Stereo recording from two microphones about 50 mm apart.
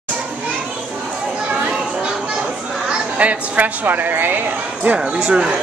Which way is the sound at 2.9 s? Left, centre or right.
Right.